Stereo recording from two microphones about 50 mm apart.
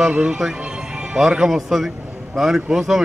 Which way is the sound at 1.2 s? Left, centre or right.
Centre.